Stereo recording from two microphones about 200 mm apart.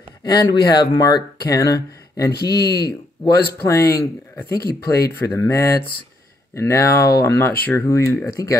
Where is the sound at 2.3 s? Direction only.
50° left (ahead or behind).